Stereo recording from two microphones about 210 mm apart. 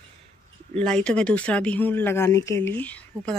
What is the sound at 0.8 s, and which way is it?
Speech, 5° left (ahead or behind).